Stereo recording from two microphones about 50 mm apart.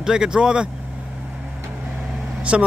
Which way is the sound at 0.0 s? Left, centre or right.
Centre.